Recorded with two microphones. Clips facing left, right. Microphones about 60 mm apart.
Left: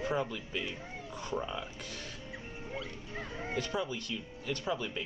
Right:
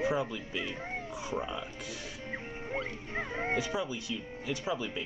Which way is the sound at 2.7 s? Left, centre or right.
Right.